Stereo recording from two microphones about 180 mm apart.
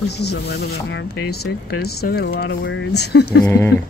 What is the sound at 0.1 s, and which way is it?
Speech, 65° left (ahead or behind).